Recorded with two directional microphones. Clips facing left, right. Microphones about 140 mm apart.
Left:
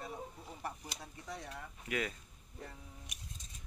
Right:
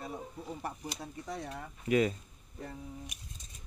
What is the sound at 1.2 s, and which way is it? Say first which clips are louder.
Speech: right 4 dB; 30° right (ahead or behind).